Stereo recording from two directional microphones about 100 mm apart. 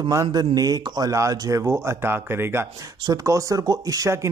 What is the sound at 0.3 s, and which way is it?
Speech, 40° right (ahead or behind).